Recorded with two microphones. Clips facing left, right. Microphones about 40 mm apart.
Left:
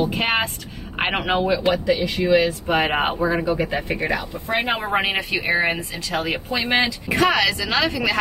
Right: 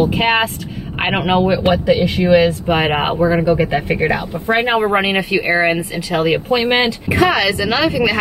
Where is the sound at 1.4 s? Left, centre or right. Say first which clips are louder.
Right 5 dB; right; by 3.4 s centre.